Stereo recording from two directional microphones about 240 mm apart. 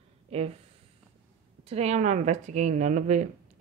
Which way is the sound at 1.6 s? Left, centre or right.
Right.